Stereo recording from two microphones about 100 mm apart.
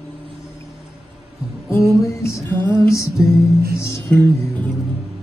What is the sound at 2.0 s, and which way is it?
Music, 30° left (ahead or behind).